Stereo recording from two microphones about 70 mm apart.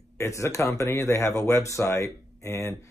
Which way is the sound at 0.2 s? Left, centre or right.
Left.